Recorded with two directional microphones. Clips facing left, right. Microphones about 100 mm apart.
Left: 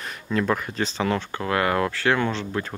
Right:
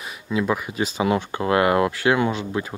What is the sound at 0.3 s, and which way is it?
Speech, 5° right (ahead or behind).